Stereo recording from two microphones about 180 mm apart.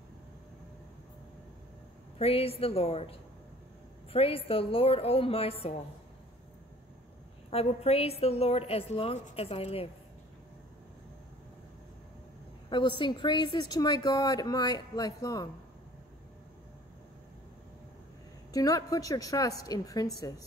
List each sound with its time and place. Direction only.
2.1 s a woman's voice: 35° left (ahead or behind)
7.5 s a woman's voice: 35° left (ahead or behind)
12.6 s a sound: 25° left (ahead or behind)
13.0 s a woman's voice: 25° left (ahead or behind)
18.5 s a woman's voice: 20° left (ahead or behind)